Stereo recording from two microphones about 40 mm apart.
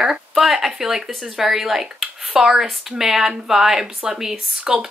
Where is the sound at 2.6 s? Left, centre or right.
Centre.